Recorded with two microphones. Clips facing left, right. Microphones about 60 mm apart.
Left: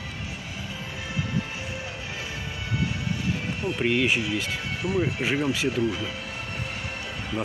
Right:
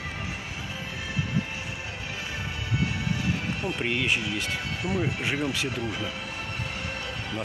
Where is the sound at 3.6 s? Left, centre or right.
Centre.